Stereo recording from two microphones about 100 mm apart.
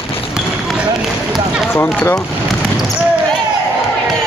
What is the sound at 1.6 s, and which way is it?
Run, 25° left (ahead or behind).